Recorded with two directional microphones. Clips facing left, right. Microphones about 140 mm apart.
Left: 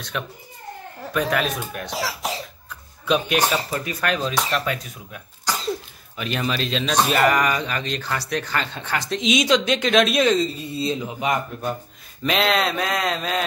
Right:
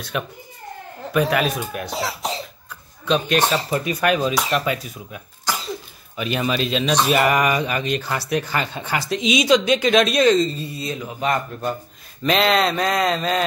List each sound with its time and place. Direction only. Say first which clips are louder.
0.1 s speech: right 3 dB; 5° right (ahead or behind)
3.1 s speech: right 1 dB; 5° left (ahead or behind)
3.7 s speech: right 5 dB; 20° right (ahead or behind)
4.0 s speech: right 3 dB; 10° right (ahead or behind)
10.7 s a man's voice: left 3 dB; 25° left (ahead or behind)
11.1 s a man's voice: right 1 dB; 15° left (ahead or behind)
12.2 s speech: right 3 dB; centre (ahead or behind)